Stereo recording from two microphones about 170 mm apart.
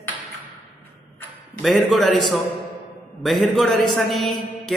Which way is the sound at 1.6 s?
Centre (ahead or behind).